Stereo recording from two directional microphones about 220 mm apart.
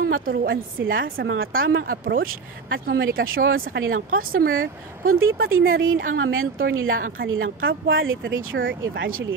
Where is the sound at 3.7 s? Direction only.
65° right (ahead or behind).